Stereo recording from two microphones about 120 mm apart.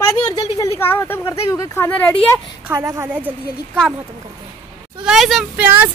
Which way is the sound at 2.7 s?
25° right (ahead or behind).